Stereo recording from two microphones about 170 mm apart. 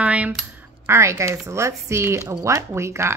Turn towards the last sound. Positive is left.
turn(degrees=-15)  # may be behind; listen again after turning